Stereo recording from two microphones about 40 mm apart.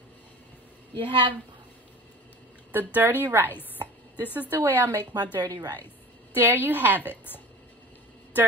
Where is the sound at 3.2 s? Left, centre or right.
Right.